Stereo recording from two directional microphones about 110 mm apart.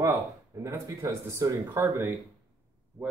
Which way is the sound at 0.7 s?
25° right (ahead or behind).